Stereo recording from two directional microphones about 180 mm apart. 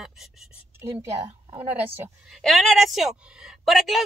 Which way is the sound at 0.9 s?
25° right (ahead or behind).